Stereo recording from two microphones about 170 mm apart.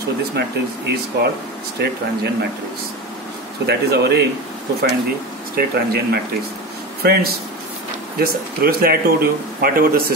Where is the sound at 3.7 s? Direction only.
75° right (ahead or behind).